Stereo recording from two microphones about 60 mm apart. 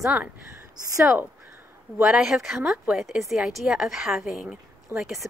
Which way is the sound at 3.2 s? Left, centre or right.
Centre.